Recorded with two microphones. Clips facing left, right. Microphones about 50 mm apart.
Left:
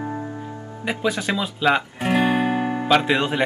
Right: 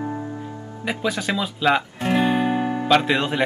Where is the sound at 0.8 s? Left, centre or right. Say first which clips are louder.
Left 1 dB; centre.